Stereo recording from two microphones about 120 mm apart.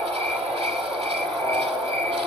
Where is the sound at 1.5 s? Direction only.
55° right (ahead or behind).